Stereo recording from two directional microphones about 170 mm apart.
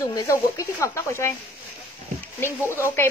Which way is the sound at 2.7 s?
15° left (ahead or behind).